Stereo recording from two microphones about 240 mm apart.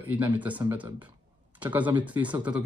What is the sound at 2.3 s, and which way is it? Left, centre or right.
Didgeridoo, centre.